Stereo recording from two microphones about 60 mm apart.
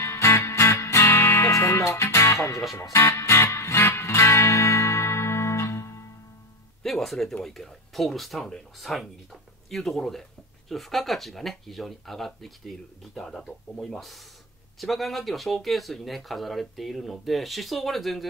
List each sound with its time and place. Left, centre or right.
0.0 s music: left
2.0 s music: left
2.3 s speech: left
2.9 s music: left
6.8 s speech: centre